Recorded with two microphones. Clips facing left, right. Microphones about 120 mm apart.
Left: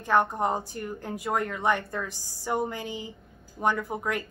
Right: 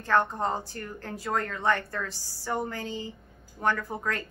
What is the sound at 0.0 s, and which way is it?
A woman's voice, 15° left (ahead or behind).